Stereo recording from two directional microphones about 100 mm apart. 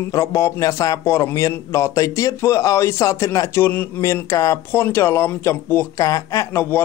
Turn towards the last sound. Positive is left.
turn(degrees=25)  # may be behind; listen again after turning